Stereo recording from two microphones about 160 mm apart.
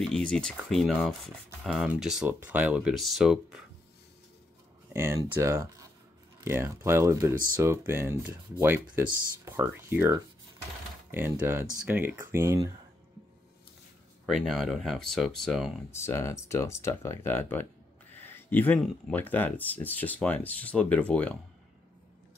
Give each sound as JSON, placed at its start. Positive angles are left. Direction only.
{"t": 0.0, "sound": "speech", "side_deg": 5}
{"t": 4.9, "sound": "speech", "side_deg": -15}
{"t": 14.2, "sound": "speech", "side_deg": 0}
{"t": 15.9, "sound": "speech", "side_deg": 15}